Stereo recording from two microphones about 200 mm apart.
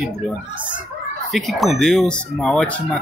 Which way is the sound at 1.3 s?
Centre (ahead or behind).